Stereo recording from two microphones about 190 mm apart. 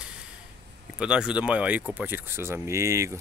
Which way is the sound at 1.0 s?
5° right (ahead or behind).